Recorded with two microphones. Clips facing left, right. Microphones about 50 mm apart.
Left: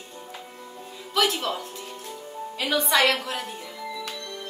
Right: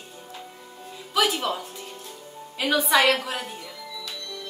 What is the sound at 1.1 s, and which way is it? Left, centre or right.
A woman's voice, centre.